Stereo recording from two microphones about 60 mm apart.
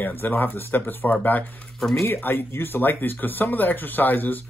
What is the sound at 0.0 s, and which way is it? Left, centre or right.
Speech, left.